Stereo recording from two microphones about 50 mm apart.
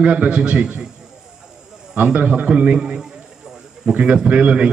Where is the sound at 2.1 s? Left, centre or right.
Right.